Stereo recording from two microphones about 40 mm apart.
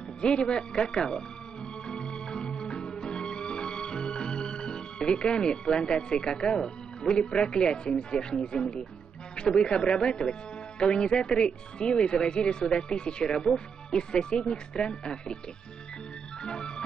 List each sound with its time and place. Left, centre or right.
0.2 s speech: left
1.9 s music: left
9.4 s speech: left
16.4 s music: left